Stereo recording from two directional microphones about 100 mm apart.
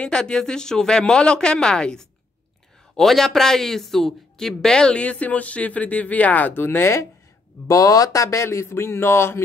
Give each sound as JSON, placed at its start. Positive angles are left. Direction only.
{"t": 0.0, "sound": "speech", "side_deg": 5}